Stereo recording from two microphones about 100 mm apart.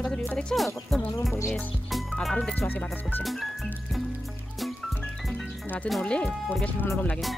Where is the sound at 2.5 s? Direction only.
20° left (ahead or behind).